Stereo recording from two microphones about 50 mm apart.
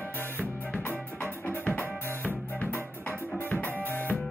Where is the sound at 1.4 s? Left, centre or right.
Left.